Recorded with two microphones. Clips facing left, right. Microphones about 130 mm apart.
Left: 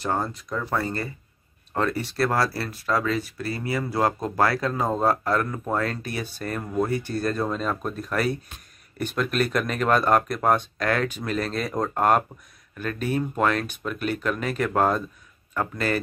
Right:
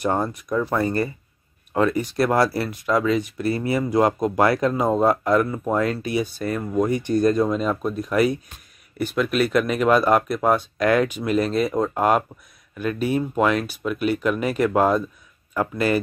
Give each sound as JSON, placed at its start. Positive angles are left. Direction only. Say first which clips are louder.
{"t": 0.0, "sound": "speech", "louder": "right 4 dB", "side_deg": -20}
{"t": 1.7, "sound": "speech", "louder": "right 5 dB", "side_deg": -10}